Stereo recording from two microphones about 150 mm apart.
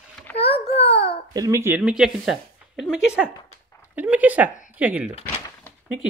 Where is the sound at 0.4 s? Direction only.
40° left (ahead or behind).